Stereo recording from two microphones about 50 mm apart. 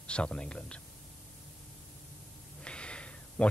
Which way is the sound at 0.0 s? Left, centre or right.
Left.